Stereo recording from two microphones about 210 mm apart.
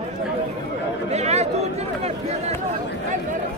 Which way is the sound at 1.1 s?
30° right (ahead or behind).